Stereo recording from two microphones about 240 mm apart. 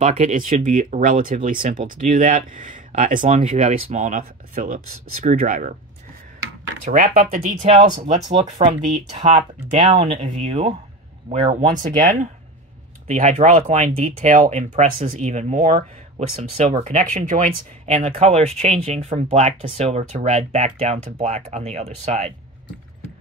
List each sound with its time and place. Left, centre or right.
0.0 s speech: right
6.8 s speech: right
11.7 s speech: right